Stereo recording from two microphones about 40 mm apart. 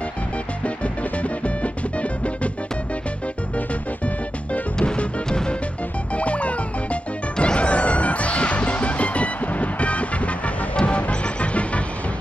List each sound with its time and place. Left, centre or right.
1.2 s music: left
4.7 s music: left